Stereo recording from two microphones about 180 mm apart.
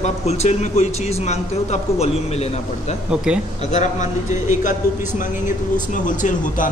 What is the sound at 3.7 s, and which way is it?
A man's voice, 40° left (ahead or behind).